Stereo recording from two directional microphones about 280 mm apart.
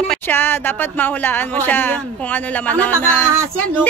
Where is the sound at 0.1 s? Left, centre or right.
Centre.